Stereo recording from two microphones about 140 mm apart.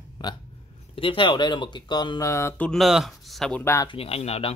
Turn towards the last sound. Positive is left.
turn(degrees=45)  # may be behind; listen again after turning